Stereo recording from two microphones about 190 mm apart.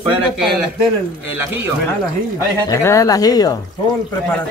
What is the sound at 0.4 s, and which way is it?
Speech, centre (ahead or behind).